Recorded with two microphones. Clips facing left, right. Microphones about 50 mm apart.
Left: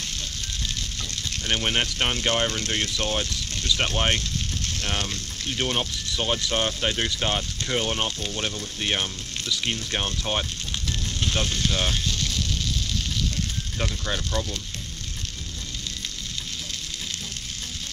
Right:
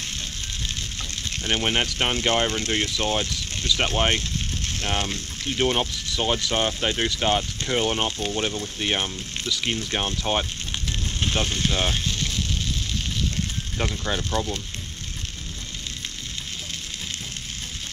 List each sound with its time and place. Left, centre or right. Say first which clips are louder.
1.3 s speech: right 1 dB; centre
11.1 s sizzle: right 2 dB; centre
13.7 s speech: right 2 dB; centre